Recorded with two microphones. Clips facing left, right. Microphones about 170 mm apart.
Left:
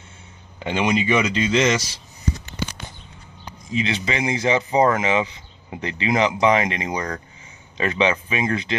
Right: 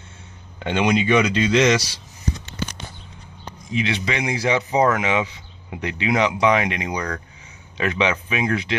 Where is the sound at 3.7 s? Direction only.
Centre (ahead or behind).